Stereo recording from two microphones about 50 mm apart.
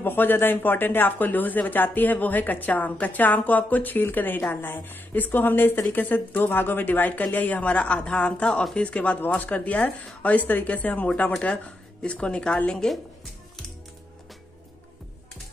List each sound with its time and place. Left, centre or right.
0.0 s speech: left; by 12.5 s centre
12.7 s a woman's voice: centre